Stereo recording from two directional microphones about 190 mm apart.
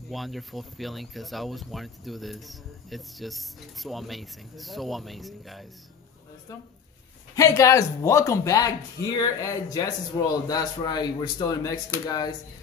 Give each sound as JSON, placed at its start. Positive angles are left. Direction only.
{"t": 0.1, "sound": "speech", "side_deg": 0}
{"t": 7.3, "sound": "speech", "side_deg": 15}